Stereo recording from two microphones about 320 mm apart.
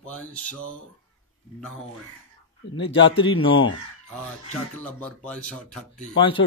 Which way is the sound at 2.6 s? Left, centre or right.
Left.